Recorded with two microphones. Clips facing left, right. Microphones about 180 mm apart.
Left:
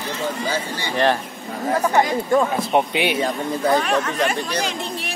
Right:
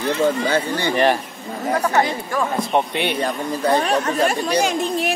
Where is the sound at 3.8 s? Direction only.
35° right (ahead or behind).